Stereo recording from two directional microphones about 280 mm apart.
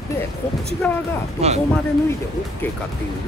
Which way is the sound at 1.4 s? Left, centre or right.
Right.